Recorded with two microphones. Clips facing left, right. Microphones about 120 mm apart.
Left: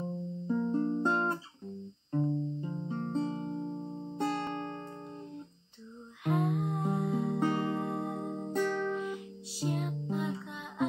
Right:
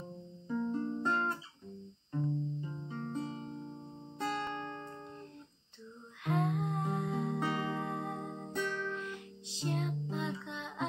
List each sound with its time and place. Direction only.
0.5 s music: 30° left (ahead or behind)
6.2 s music: 10° left (ahead or behind)
7.3 s music: 40° left (ahead or behind)
7.7 s music: 10° left (ahead or behind)
8.5 s music: 50° left (ahead or behind)
8.9 s music: 5° left (ahead or behind)